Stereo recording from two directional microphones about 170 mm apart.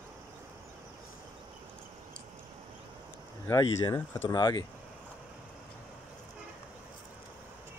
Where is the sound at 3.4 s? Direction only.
20° left (ahead or behind).